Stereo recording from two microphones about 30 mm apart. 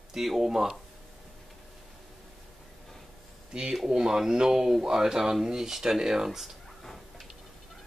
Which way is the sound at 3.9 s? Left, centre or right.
Right.